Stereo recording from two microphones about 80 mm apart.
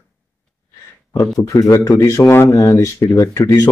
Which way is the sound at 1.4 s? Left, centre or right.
Left.